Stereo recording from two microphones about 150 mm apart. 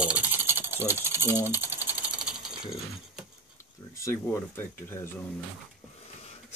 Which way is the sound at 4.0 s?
20° left (ahead or behind).